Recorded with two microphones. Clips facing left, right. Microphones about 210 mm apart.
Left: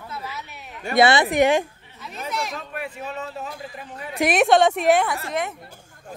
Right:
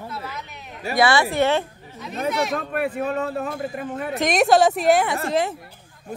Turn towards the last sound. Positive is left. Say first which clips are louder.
# right 5 dB
turn(degrees=-30)  # may be behind; listen again after turning